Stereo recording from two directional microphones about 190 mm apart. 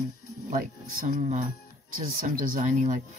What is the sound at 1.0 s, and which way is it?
Speech, 40° right (ahead or behind).